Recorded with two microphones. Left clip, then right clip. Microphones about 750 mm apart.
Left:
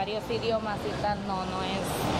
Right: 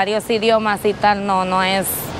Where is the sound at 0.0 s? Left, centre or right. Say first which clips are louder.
Right 13 dB; right.